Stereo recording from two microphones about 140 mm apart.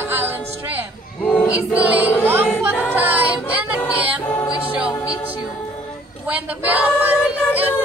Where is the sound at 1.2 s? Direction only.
Centre (ahead or behind).